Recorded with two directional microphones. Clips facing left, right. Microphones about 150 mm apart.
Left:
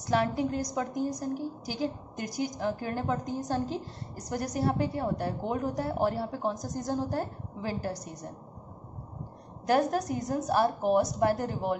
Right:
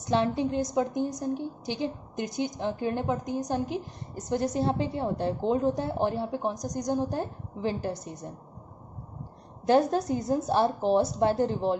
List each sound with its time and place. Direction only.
0.1 s a woman's voice: 25° right (ahead or behind)
9.7 s a woman's voice: 25° right (ahead or behind)